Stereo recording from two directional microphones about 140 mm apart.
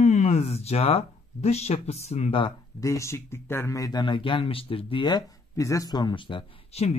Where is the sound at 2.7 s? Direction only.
20° left (ahead or behind).